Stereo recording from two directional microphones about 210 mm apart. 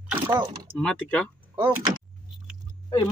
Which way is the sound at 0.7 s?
5° left (ahead or behind).